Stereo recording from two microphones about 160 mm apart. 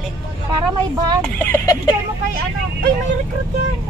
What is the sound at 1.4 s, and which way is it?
Speech, 20° left (ahead or behind).